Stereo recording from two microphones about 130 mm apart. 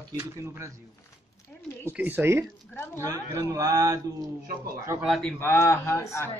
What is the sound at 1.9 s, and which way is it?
Speech, 15° right (ahead or behind).